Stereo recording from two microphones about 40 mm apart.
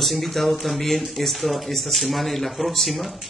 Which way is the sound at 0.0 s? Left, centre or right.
Centre.